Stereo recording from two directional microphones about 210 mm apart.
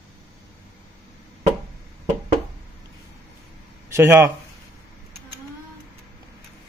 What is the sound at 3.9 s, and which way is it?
Speech, 15° right (ahead or behind).